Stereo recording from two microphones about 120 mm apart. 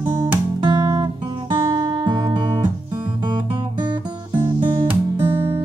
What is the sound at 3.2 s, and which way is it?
Guitar, 40° right (ahead or behind).